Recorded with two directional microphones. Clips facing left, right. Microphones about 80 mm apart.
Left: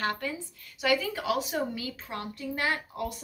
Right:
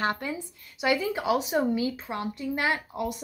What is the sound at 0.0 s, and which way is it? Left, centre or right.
Speech, right.